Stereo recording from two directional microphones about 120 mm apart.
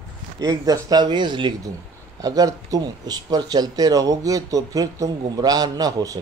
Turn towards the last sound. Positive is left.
turn(degrees=-30)  # may be behind; listen again after turning